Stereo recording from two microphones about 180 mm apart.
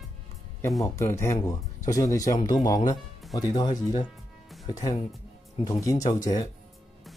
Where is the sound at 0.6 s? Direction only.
15° left (ahead or behind).